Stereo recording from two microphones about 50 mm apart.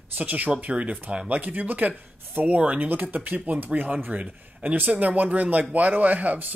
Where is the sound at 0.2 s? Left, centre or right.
Right.